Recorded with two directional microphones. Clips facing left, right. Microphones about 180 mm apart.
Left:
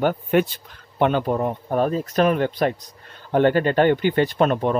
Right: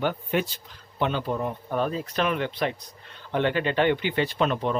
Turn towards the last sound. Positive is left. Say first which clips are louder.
# left 6 dB
turn(degrees=50)  # may be behind; listen again after turning